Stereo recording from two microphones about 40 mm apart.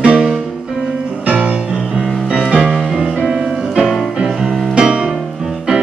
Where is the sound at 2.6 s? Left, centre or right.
Centre.